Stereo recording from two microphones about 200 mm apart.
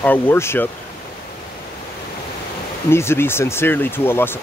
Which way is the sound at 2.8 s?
10° left (ahead or behind).